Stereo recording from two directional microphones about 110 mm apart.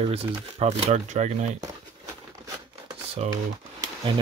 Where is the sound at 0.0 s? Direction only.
60° right (ahead or behind); by 1.6 s 90° right.